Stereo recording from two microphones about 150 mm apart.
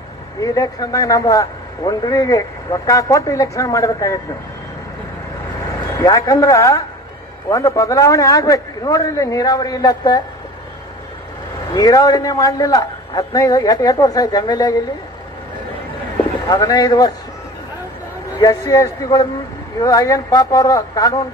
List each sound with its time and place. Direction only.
0.4 s speech: 25° left (ahead or behind)
5.9 s speech: 25° left (ahead or behind)
11.7 s speech: 25° left (ahead or behind)
16.4 s speech: 25° left (ahead or behind)
18.4 s speech: 25° left (ahead or behind)